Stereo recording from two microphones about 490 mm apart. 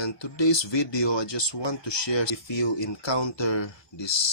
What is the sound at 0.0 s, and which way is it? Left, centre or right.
Speech, left.